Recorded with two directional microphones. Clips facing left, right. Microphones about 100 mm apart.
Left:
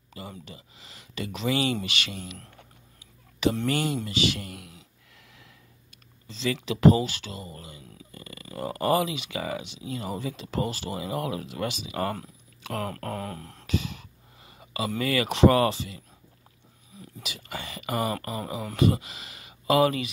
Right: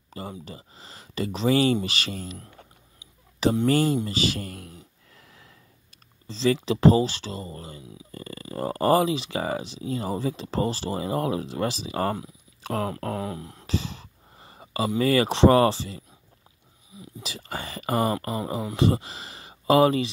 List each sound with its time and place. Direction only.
0.2 s speech: 35° right (ahead or behind)
2.3 s speech: 10° right (ahead or behind)
3.6 s speech: 35° right (ahead or behind)
6.2 s speech: 35° right (ahead or behind)
12.9 s a sound: 25° right (ahead or behind)
13.2 s a sound: 10° right (ahead or behind)
13.7 s a sound: 30° right (ahead or behind)
15.0 s speech: 30° right (ahead or behind)
17.2 s speech: 35° right (ahead or behind)